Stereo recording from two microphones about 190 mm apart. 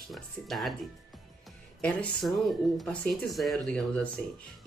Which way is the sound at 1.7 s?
Centre (ahead or behind).